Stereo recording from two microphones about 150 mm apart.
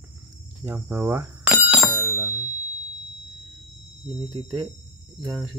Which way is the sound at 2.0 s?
15° right (ahead or behind).